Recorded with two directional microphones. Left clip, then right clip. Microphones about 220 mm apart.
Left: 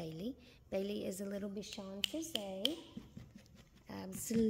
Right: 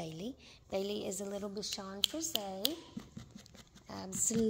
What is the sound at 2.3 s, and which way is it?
Speech, 20° right (ahead or behind).